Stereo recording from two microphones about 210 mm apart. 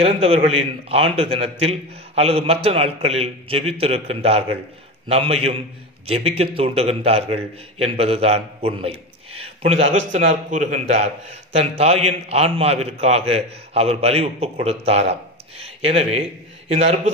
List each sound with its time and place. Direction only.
0.0 s a man's voice: 30° right (ahead or behind)